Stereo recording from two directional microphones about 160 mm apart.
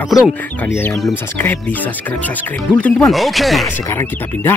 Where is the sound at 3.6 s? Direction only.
15° left (ahead or behind).